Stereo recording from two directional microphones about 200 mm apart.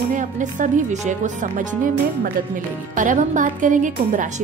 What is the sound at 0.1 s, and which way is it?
A woman's voice, 40° right (ahead or behind).